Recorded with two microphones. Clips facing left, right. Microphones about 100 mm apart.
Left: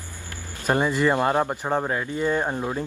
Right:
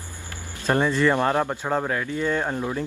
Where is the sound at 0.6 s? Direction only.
15° left (ahead or behind).